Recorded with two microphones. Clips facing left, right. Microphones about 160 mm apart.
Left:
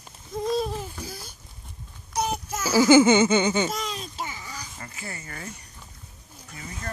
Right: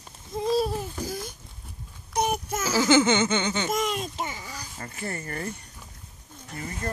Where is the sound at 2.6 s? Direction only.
10° left (ahead or behind).